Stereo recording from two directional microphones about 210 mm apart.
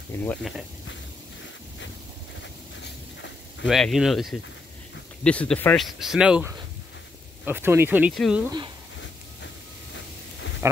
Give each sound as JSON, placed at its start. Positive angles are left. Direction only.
{"t": 0.2, "sound": "speech", "side_deg": 10}
{"t": 3.6, "sound": "speech", "side_deg": 0}
{"t": 8.5, "sound": "speech", "side_deg": -20}
{"t": 10.6, "sound": "a sound", "side_deg": -15}